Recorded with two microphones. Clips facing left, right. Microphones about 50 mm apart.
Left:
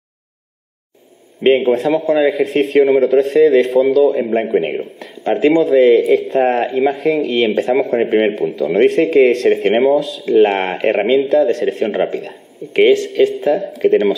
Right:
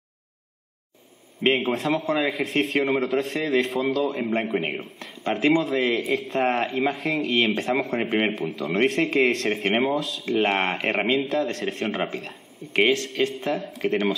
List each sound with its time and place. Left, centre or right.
1.4 s a man's voice: centre